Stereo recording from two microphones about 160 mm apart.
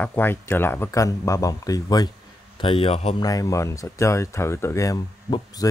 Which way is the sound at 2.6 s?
35° left (ahead or behind).